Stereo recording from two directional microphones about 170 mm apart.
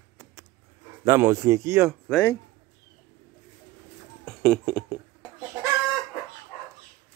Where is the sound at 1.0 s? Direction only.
20° right (ahead or behind).